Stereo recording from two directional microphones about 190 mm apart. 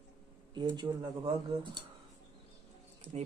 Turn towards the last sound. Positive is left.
turn(degrees=-10)  # may be behind; listen again after turning